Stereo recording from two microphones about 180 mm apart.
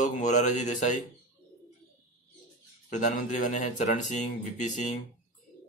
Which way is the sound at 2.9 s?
45° left (ahead or behind).